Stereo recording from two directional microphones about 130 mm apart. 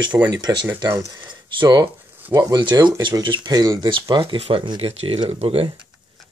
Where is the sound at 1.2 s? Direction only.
35° right (ahead or behind).